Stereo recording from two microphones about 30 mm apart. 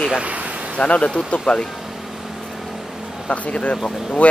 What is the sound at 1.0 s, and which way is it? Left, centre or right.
Speech, left.